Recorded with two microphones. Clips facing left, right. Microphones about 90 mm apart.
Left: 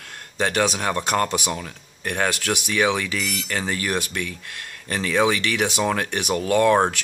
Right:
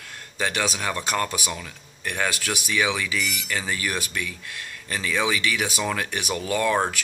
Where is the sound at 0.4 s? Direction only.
55° left (ahead or behind).